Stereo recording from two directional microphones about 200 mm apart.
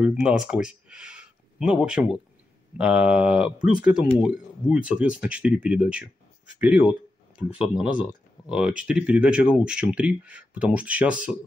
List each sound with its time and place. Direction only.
0.0 s speech: 5° right (ahead or behind)